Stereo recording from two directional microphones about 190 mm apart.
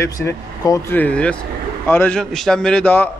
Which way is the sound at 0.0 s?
15° left (ahead or behind).